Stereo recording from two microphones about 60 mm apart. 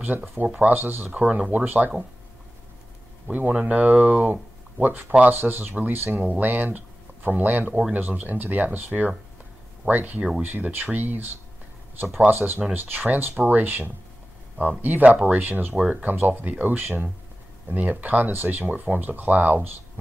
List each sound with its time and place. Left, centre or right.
0.6 s speech: right
1.1 s speech: centre
3.3 s speech: right
18.7 s speech: right